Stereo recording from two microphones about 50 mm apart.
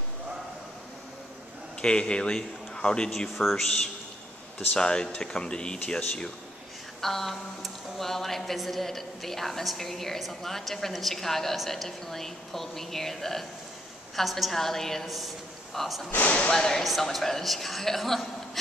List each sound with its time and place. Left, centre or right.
1.8 s a man's voice: centre
3.3 s a woman's voice: centre
7.0 s a woman's voice: centre
16.1 s speech: left
16.5 s a woman's voice: centre